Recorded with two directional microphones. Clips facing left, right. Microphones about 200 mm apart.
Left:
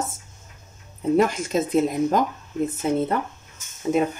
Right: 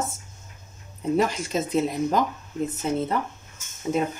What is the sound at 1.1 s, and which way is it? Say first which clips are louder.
Speech: left 3 dB; 50° left (ahead or behind).